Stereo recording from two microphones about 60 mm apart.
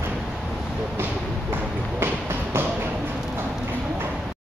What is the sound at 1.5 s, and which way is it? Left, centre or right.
Run, right.